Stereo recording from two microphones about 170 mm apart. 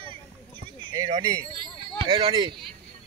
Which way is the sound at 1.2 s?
20° right (ahead or behind).